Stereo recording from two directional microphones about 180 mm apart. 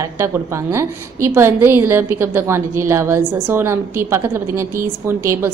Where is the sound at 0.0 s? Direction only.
15° right (ahead or behind).